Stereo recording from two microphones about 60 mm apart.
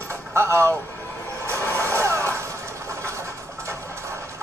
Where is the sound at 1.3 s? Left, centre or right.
Right.